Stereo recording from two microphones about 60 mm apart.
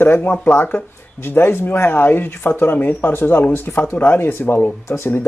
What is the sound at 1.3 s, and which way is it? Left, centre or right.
Speech, left.